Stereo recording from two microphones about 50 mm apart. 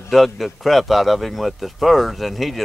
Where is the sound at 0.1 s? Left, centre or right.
Centre.